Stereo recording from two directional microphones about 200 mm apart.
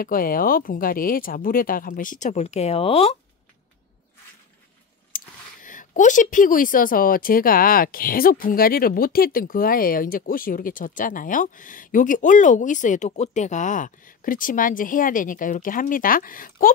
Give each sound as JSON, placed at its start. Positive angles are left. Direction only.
{"t": 0.0, "sound": "speech", "side_deg": 45}
{"t": 5.1, "sound": "speech", "side_deg": 40}